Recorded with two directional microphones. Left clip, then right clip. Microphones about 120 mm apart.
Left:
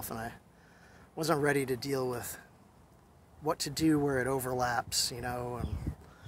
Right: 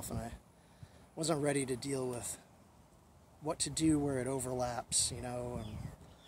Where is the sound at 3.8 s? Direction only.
15° right (ahead or behind).